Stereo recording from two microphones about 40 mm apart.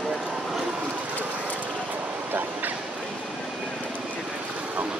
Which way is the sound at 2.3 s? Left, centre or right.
Right.